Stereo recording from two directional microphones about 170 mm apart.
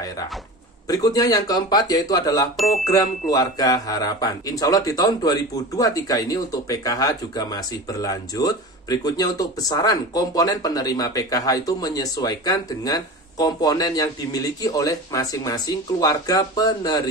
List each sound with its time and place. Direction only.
0.8 s a man's voice: 20° left (ahead or behind)
2.5 s bicycle bell: centre (ahead or behind)
3.3 s a man's voice: 20° left (ahead or behind)